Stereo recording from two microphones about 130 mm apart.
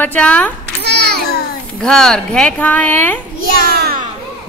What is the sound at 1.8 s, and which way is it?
A woman's voice, 5° left (ahead or behind).